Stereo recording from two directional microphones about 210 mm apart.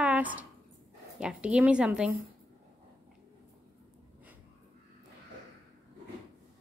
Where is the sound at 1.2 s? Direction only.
5° right (ahead or behind).